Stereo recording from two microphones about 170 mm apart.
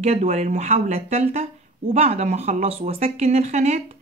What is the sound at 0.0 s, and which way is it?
A woman's voice, 40° right (ahead or behind).